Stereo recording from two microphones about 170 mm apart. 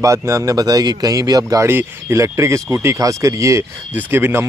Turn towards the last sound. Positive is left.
turn(degrees=-10)  # may be behind; listen again after turning